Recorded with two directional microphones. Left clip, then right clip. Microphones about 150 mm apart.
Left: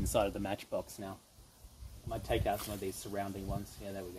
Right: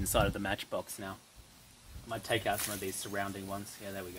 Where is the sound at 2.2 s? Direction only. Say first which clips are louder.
Right 2 dB; centre (ahead or behind).